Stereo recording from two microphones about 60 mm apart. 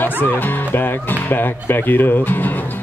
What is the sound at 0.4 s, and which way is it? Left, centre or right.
Speech, left.